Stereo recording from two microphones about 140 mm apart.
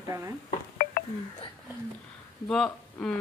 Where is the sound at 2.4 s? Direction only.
5° left (ahead or behind).